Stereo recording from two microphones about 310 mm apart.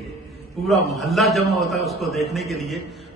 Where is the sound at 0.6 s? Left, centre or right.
Centre.